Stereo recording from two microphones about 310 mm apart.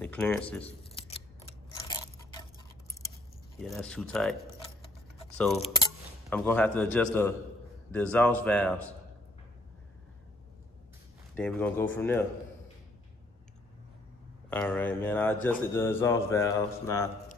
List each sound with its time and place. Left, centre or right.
0.0 s a man's voice: centre
0.7 s scissors: centre
3.5 s a man's voice: centre
5.6 s a man's voice: centre
11.3 s a man's voice: centre
14.5 s a man's voice: centre